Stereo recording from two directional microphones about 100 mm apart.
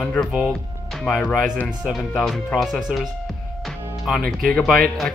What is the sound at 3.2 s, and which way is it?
Music, 5° left (ahead or behind).